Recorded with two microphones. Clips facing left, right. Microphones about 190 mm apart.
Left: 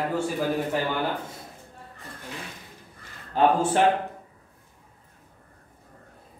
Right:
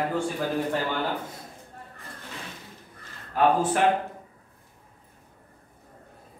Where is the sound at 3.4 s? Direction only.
30° left (ahead or behind).